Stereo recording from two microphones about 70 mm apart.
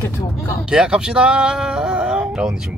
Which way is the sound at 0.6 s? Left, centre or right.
Centre.